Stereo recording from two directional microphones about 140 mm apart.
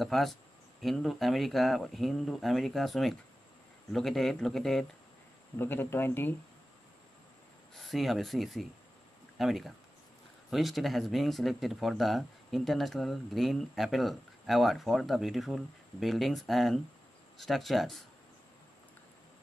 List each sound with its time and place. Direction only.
0.0 s speech: centre (ahead or behind)
5.6 s speech: 15° left (ahead or behind)
7.7 s speech: centre (ahead or behind)